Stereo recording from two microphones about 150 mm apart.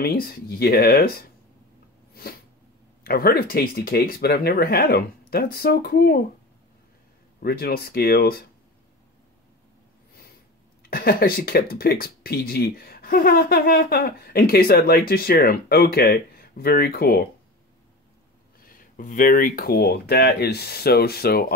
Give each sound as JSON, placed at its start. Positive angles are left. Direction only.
{"t": 0.0, "sound": "speech", "side_deg": 90}
{"t": 3.0, "sound": "speech", "side_deg": 85}
{"t": 7.3, "sound": "speech", "side_deg": 90}
{"t": 10.8, "sound": "speech", "side_deg": 90}
{"t": 18.6, "sound": "speech", "side_deg": 70}